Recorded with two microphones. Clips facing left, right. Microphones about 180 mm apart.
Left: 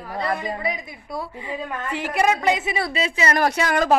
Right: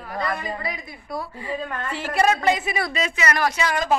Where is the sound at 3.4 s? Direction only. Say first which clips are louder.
Left 3 dB; 50° left (ahead or behind).